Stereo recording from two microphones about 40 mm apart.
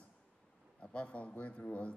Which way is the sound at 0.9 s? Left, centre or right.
Left.